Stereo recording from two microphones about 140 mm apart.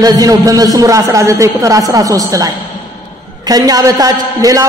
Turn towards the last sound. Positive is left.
turn(degrees=-25)  # may be behind; listen again after turning